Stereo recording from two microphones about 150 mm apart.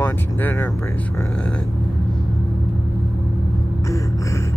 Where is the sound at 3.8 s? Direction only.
20° left (ahead or behind).